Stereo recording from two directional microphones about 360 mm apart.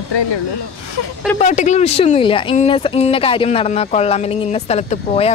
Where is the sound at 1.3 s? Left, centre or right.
Centre.